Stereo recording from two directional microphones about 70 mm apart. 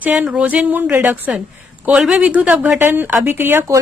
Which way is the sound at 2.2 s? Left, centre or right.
Centre.